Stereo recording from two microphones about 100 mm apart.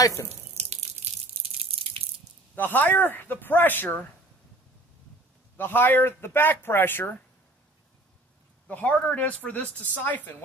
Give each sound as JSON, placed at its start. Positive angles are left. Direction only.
{"t": 0.0, "sound": "speech", "side_deg": 35}
{"t": 0.6, "sound": "drip", "side_deg": -90}
{"t": 1.3, "sound": "drip", "side_deg": -75}
{"t": 2.5, "sound": "speech", "side_deg": 20}
{"t": 5.6, "sound": "speech", "side_deg": 20}
{"t": 8.6, "sound": "speech", "side_deg": 15}